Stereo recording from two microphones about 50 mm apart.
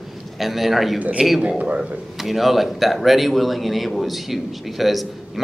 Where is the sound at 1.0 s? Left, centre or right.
Right.